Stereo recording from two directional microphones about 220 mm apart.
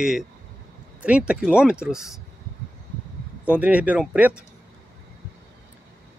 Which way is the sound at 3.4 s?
5° right (ahead or behind).